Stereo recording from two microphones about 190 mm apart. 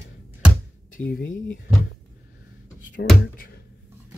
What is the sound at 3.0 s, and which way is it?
Speech, 65° left (ahead or behind).